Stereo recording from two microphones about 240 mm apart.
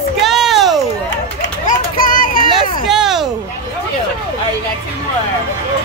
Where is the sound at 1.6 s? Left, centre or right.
Left.